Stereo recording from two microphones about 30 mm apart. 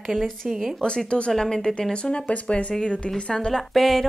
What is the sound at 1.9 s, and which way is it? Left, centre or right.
Speech, left.